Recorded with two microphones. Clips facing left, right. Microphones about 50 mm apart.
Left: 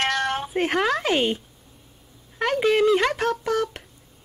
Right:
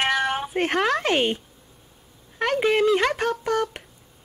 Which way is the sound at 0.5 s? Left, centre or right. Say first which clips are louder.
Left 1 dB; centre.